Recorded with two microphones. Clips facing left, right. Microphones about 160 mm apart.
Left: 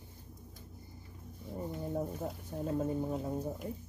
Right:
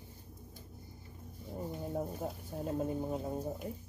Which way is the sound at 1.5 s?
5° right (ahead or behind).